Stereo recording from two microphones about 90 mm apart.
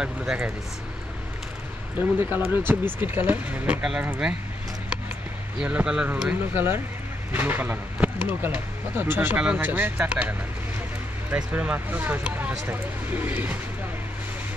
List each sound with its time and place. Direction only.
0.0 s speech: 5° right (ahead or behind)
2.0 s speech: 20° right (ahead or behind)
5.6 s speech: 10° right (ahead or behind)
11.3 s speech: 15° right (ahead or behind)